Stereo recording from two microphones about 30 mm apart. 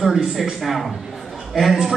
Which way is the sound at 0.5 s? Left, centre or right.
Centre.